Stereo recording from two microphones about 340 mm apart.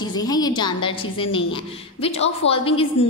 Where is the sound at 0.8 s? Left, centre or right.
Centre.